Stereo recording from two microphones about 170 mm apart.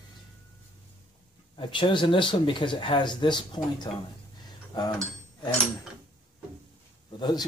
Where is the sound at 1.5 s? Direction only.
30° left (ahead or behind).